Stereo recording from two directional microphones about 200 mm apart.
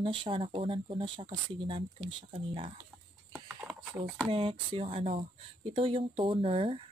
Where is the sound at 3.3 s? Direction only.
5° right (ahead or behind).